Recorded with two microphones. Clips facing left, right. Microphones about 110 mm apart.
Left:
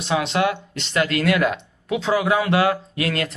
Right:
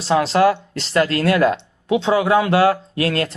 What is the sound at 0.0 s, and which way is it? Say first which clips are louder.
Speech: right 6 dB; 35° right (ahead or behind).